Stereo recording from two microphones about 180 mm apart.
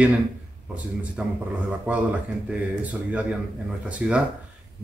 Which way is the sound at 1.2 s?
5° right (ahead or behind).